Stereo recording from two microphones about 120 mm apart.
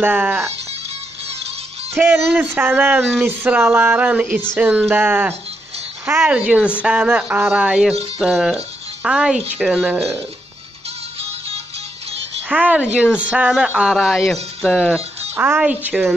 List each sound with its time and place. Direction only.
0.0 s speech: 15° right (ahead or behind)
2.0 s speech: 15° right (ahead or behind)
11.1 s music: 55° right (ahead or behind)
12.4 s speech: 10° right (ahead or behind)
15.3 s speech: 15° right (ahead or behind)